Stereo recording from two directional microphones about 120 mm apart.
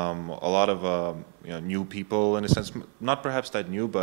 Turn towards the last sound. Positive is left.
turn(degrees=-15)  # may be behind; listen again after turning